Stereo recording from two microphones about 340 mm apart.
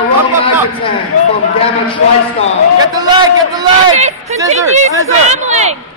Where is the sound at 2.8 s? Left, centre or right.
Centre.